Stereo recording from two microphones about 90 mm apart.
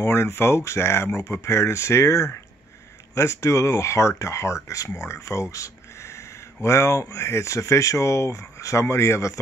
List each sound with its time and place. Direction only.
0.0 s speech: 30° left (ahead or behind)